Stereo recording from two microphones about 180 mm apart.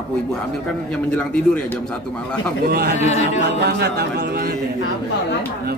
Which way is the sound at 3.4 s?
70° right (ahead or behind).